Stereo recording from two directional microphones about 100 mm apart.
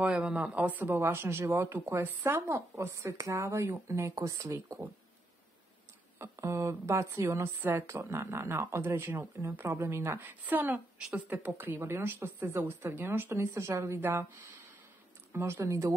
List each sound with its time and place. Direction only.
0.0 s speech: 10° right (ahead or behind); by 4.7 s 35° right (ahead or behind)
6.1 s speech: 30° right (ahead or behind)
11.0 s speech: 5° right (ahead or behind)
11.2 s speech: 20° right (ahead or behind)
15.3 s speech: 25° right (ahead or behind)